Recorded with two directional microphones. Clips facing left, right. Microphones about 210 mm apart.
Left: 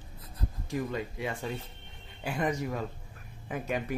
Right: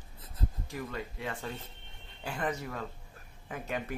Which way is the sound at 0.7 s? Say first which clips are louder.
Left 8 dB; 15° left (ahead or behind).